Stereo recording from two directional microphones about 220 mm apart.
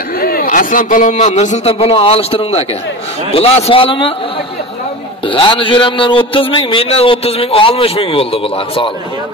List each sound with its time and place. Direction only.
0.2 s a man's voice: 45° left (ahead or behind); by 4.1 s 25° left (ahead or behind)
5.2 s a man's voice: 25° left (ahead or behind)